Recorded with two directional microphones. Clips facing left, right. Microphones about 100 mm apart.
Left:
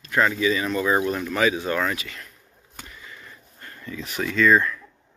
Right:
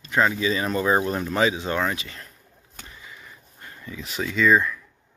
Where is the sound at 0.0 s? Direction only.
20° right (ahead or behind).